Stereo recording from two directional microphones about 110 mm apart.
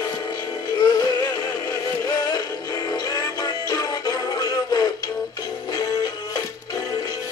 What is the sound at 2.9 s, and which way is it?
Music, 35° left (ahead or behind).